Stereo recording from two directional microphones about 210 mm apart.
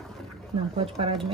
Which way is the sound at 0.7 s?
25° right (ahead or behind).